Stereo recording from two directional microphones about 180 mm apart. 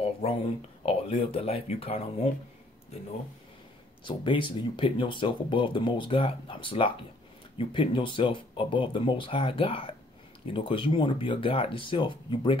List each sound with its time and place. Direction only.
0.0 s a sound: 30° left (ahead or behind)
0.8 s speech: 30° left (ahead or behind)
4.0 s speech: 25° left (ahead or behind)